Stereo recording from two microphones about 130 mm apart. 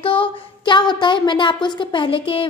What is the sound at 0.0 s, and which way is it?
A woman's voice, 40° left (ahead or behind).